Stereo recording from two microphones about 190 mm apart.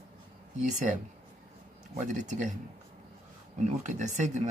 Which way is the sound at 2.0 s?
40° right (ahead or behind).